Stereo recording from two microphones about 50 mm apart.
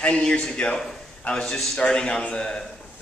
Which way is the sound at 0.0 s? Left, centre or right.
Left.